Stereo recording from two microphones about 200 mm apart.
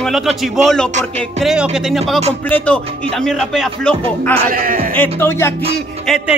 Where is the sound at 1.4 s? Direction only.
5° right (ahead or behind).